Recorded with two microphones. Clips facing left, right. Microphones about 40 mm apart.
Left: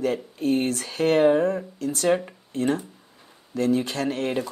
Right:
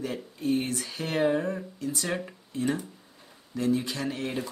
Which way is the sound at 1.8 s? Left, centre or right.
Left.